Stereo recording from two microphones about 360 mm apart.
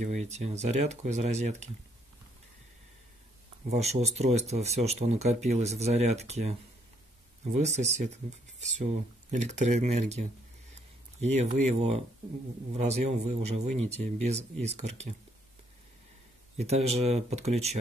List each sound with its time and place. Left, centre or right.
0.0 s speech: centre
3.7 s speech: centre
10.7 s a sound: centre
12.7 s speech: centre
16.5 s speech: centre